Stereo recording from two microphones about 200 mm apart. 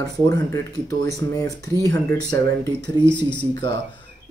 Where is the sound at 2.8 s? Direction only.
60° right (ahead or behind).